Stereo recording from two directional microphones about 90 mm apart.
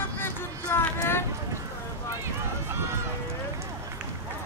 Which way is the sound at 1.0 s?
25° left (ahead or behind).